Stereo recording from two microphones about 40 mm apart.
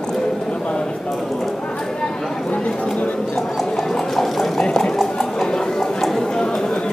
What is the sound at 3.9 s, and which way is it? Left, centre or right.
Vehicle, centre.